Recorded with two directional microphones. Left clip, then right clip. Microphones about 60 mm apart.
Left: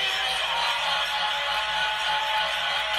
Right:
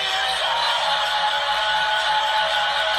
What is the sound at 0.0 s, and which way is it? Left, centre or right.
Music, right.